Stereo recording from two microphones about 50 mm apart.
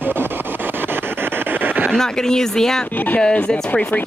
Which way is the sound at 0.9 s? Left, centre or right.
Right.